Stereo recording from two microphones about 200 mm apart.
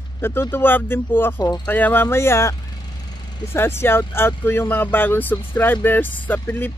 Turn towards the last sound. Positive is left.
turn(degrees=10)  # may be behind; listen again after turning